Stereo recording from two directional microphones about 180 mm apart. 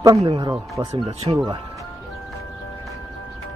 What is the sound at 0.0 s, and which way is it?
Speech, 20° right (ahead or behind).